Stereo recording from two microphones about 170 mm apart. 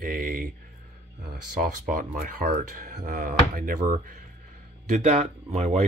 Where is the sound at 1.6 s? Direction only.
55° right (ahead or behind).